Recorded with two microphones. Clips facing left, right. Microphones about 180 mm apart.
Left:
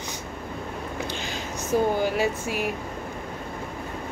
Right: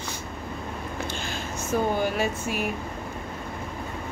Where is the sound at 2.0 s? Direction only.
10° left (ahead or behind).